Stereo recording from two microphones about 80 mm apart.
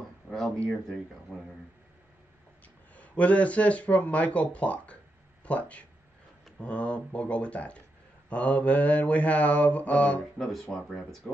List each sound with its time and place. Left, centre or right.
2.9 s mantra: centre
5.4 s speech: centre
6.6 s mantra: centre
10.4 s speech: centre